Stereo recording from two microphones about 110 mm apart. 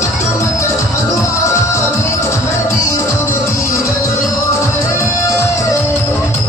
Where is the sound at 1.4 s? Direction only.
30° left (ahead or behind).